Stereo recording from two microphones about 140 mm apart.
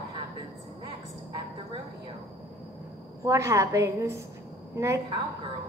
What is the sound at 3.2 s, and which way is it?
A woman's voice, 20° right (ahead or behind).